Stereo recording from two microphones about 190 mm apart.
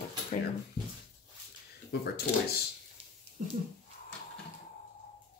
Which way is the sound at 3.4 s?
45° right (ahead or behind).